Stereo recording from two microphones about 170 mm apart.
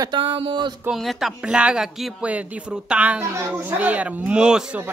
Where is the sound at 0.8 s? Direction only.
Centre (ahead or behind).